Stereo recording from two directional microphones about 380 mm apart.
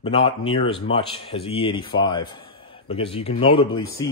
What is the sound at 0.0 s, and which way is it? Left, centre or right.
A man's voice, centre.